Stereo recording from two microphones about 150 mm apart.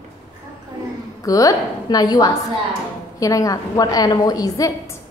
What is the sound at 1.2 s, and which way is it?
A woman's voice, 25° left (ahead or behind).